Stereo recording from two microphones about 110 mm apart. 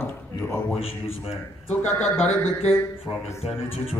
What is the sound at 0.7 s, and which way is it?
Speech, 60° left (ahead or behind).